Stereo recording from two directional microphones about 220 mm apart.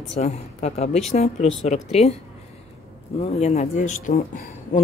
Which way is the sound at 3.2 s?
30° left (ahead or behind).